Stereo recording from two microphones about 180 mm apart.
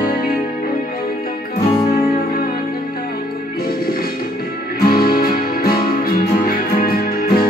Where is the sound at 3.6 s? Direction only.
55° left (ahead or behind).